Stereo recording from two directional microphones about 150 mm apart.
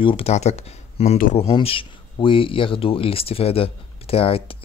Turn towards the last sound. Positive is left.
turn(degrees=40)  # may be behind; listen again after turning